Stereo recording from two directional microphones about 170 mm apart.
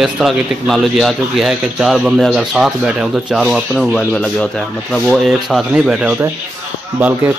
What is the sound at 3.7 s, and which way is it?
Speech, 10° left (ahead or behind).